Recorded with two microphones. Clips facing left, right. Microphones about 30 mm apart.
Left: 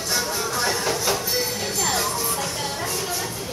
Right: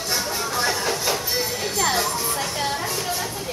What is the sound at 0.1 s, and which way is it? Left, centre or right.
Music, centre.